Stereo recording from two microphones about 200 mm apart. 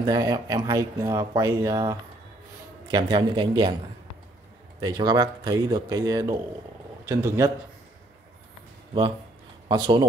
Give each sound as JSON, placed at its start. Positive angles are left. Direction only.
{"t": 0.0, "sound": "speech", "side_deg": -20}
{"t": 4.7, "sound": "a man's voice", "side_deg": -20}
{"t": 9.7, "sound": "speech", "side_deg": -20}